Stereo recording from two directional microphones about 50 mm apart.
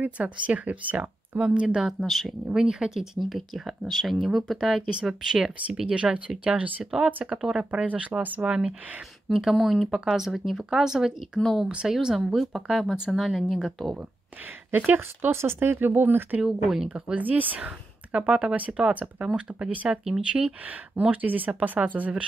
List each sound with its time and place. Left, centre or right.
0.0 s speech: right
1.9 s speech: centre; by 6.7 s right
6.8 s speech: centre
7.7 s speech: right
9.3 s speech: centre
14.7 s speech: right
15.3 s speech: right
16.6 s speech: centre
16.9 s speech: right
20.6 s speech: right